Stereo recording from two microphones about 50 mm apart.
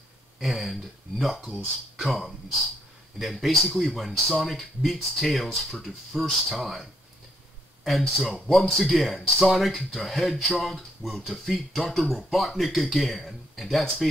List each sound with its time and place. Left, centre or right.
0.4 s speech: centre